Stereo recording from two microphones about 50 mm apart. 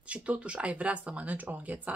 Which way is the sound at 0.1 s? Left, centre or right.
Right.